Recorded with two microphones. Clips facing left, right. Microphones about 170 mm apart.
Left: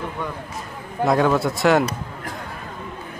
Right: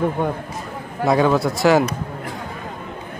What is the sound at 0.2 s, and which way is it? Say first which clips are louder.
Speech: right 7 dB; 55° right (ahead or behind).